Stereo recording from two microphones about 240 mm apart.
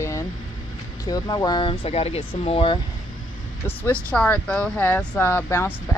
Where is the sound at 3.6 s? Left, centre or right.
Centre.